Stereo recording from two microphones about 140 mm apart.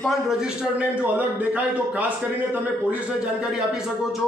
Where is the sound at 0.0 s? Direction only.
Centre (ahead or behind).